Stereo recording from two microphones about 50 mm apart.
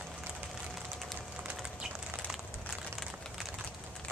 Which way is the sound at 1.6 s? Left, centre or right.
Centre.